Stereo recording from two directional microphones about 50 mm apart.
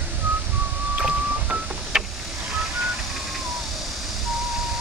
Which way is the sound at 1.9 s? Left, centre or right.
Centre.